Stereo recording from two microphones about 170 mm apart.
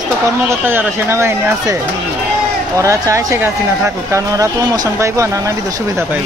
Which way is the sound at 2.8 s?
15° right (ahead or behind).